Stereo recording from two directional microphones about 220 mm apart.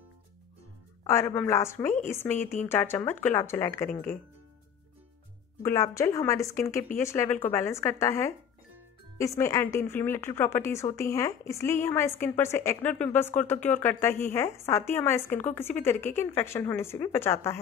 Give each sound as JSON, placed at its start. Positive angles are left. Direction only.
{"t": 1.0, "sound": "speech", "side_deg": 10}
{"t": 5.6, "sound": "speech", "side_deg": 15}